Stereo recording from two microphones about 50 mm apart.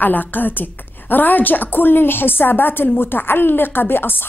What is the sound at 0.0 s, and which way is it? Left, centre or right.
A woman's voice, left.